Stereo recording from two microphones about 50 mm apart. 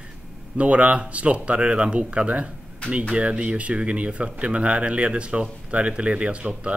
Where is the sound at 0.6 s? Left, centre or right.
Right.